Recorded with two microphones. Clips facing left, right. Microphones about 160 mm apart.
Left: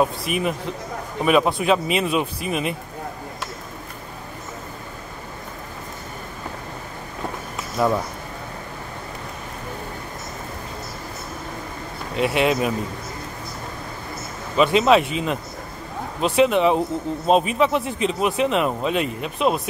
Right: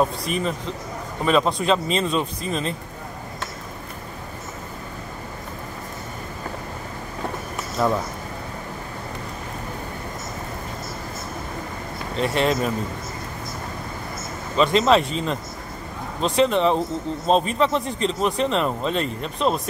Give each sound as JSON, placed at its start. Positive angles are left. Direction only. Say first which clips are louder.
{"t": 0.0, "sound": "speech", "louder": "left 1 dB", "side_deg": 10}
{"t": 7.8, "sound": "speech", "louder": "left 1 dB", "side_deg": 5}
{"t": 12.2, "sound": "speech", "louder": "left 2 dB", "side_deg": 5}
{"t": 14.6, "sound": "speech", "louder": "left 1 dB", "side_deg": 5}